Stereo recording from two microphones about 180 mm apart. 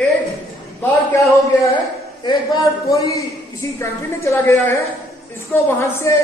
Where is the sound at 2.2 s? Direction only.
20° left (ahead or behind).